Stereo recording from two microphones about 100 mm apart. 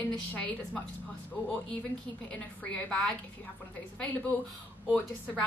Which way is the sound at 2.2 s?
15° left (ahead or behind).